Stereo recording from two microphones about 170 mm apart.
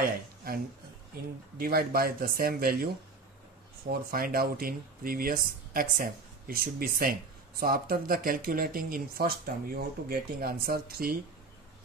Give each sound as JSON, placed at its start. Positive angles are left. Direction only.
{"t": 1.6, "sound": "speech", "side_deg": -60}
{"t": 3.9, "sound": "speech", "side_deg": -60}